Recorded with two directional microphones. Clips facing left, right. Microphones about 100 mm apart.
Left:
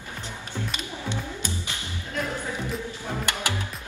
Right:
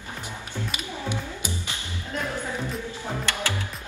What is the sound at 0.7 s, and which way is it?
Music, 10° right (ahead or behind).